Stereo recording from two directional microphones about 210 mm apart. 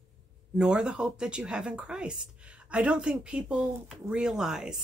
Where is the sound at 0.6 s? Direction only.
5° right (ahead or behind).